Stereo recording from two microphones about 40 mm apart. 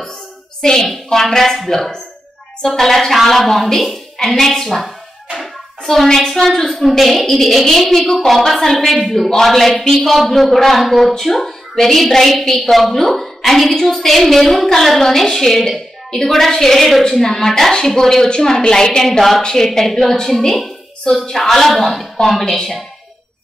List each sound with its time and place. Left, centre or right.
0.6 s a child's voice: centre
2.6 s a woman's voice: centre